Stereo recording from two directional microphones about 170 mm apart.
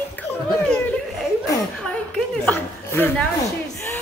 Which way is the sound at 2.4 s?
10° left (ahead or behind).